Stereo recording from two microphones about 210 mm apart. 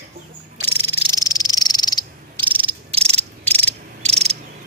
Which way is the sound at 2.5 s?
25° right (ahead or behind).